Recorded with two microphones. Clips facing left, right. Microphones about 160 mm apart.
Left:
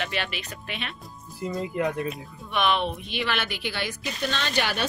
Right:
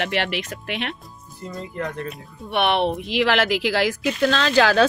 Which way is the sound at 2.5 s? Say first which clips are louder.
Right 5 dB; 70° right (ahead or behind).